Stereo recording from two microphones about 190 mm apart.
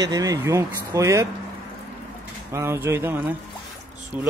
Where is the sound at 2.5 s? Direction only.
15° right (ahead or behind).